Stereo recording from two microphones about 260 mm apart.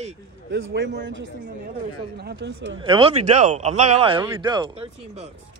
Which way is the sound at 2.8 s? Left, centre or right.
Right.